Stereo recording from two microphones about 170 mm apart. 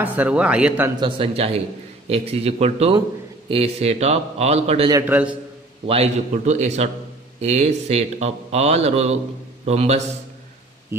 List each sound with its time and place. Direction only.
0.0 s speech: 10° right (ahead or behind)
0.9 s speech: 30° right (ahead or behind)
5.0 s speech: 10° right (ahead or behind)
6.3 s a man's voice: 45° right (ahead or behind)
10.9 s speech: 15° right (ahead or behind)